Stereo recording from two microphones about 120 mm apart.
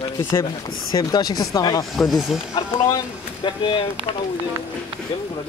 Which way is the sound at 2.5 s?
40° left (ahead or behind).